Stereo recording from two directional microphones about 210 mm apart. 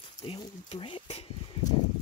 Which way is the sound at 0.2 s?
25° left (ahead or behind).